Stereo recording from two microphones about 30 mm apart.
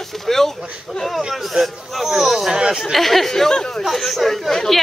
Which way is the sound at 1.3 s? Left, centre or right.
Centre.